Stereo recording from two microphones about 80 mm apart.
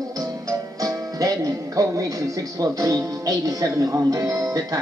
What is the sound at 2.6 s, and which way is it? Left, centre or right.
Speech, right.